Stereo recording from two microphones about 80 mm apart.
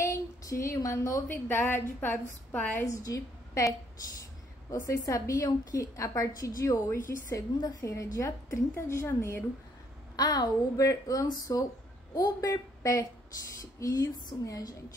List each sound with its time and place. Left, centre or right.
0.0 s a sound: left
1.5 s a woman's voice: left
2.9 s a woman's voice: left
7.2 s a woman's voice: left
7.8 s a woman's voice: left
10.1 s a woman's voice: left
12.4 s a woman's voice: left